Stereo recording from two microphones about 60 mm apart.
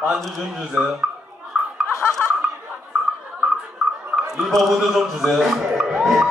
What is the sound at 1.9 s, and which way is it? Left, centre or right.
Chuckle, left.